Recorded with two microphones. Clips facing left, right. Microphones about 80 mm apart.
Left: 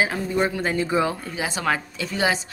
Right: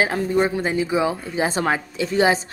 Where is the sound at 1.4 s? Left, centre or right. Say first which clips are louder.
Right 4 dB; right.